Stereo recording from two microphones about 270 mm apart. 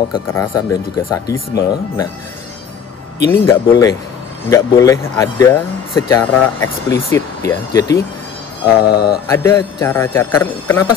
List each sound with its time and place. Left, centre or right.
0.1 s speech: centre
3.3 s speech: centre
8.7 s mantra: left
9.3 s speech: centre